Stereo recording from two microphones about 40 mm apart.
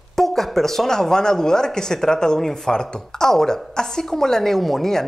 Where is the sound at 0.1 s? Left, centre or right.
Centre.